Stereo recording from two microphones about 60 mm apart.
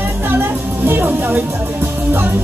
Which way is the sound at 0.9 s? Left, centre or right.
Right.